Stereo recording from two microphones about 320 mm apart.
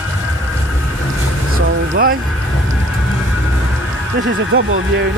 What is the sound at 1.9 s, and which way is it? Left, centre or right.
Speech, right.